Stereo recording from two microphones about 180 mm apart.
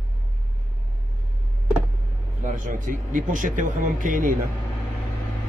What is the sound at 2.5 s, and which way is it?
Speech, 45° right (ahead or behind).